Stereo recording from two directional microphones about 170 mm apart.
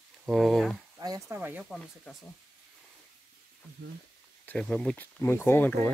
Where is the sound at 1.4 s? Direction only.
10° right (ahead or behind).